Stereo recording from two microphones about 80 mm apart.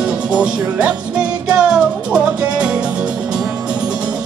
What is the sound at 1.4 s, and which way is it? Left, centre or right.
Music, centre.